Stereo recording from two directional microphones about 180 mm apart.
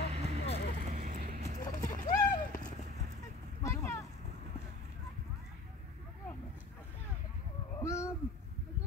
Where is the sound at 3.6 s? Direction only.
15° left (ahead or behind).